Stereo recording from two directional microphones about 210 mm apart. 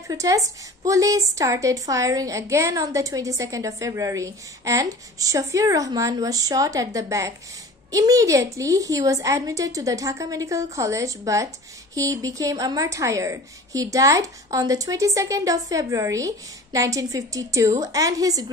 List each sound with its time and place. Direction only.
0.1 s a woman's voice: 15° right (ahead or behind)